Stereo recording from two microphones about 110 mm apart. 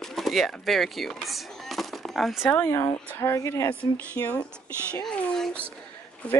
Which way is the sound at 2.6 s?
25° left (ahead or behind).